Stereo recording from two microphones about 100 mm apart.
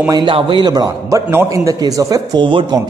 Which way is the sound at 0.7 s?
40° right (ahead or behind).